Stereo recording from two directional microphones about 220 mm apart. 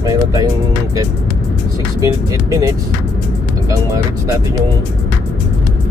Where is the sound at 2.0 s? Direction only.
15° right (ahead or behind).